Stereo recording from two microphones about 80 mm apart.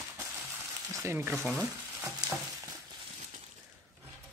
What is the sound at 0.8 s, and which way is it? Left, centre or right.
Speech, right.